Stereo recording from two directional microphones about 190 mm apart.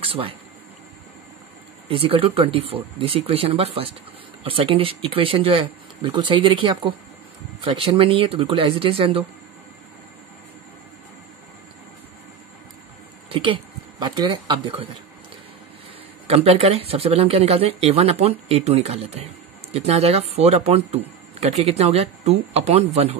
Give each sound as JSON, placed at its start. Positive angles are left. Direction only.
{"t": 0.0, "sound": "speech", "side_deg": -30}
{"t": 1.9, "sound": "speech", "side_deg": -30}
{"t": 13.3, "sound": "speech", "side_deg": -25}
{"t": 16.3, "sound": "speech", "side_deg": -30}